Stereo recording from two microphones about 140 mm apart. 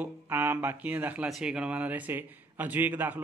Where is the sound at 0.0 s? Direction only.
15° right (ahead or behind).